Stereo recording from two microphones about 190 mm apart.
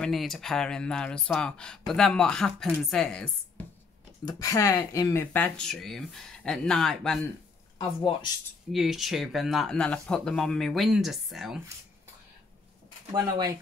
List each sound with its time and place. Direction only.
0.0 s speech: centre (ahead or behind)
4.3 s speech: 20° left (ahead or behind); by 7.2 s centre (ahead or behind)
8.7 s speech: centre (ahead or behind)
13.1 s speech: 20° right (ahead or behind)